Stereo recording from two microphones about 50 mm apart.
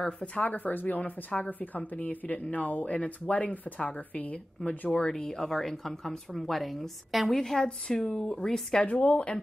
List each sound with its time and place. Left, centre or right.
0.0 s speech: left
8.8 s speech: left